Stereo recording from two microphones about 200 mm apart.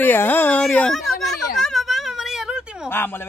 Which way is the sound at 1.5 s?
Centre (ahead or behind).